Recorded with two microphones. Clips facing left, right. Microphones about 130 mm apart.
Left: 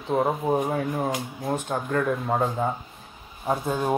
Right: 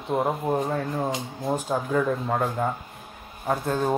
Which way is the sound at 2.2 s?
10° left (ahead or behind).